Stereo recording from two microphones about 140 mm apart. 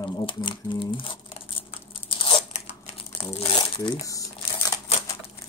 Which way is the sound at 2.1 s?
40° left (ahead or behind).